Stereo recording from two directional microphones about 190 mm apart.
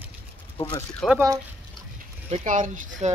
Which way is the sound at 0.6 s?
5° left (ahead or behind).